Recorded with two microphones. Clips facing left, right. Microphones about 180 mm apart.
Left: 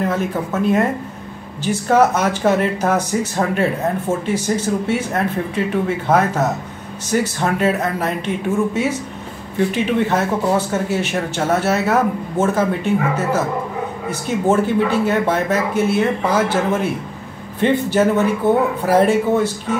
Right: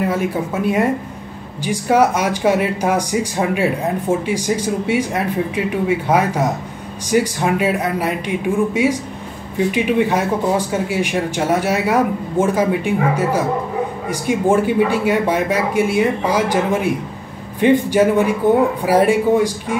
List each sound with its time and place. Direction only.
0.0 s speech: 10° right (ahead or behind)